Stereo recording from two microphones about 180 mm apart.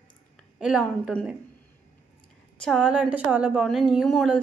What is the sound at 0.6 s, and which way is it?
Speech, centre (ahead or behind).